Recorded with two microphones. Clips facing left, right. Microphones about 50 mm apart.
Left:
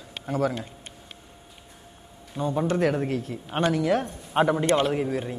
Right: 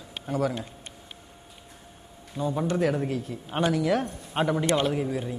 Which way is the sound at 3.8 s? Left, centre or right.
Left.